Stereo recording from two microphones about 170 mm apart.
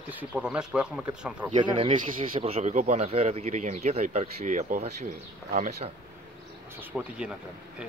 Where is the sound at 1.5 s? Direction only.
30° right (ahead or behind).